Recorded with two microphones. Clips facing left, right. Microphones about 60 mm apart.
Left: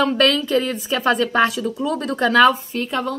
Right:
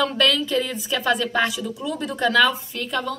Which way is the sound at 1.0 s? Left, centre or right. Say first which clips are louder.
Left 4 dB; left.